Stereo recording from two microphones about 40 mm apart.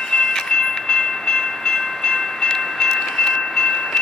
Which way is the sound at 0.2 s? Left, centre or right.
Centre.